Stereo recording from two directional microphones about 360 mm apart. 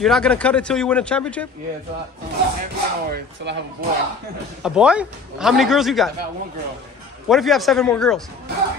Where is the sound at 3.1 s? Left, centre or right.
Right.